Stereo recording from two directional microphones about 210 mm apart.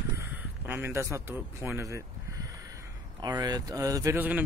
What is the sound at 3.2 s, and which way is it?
Speech, 20° right (ahead or behind).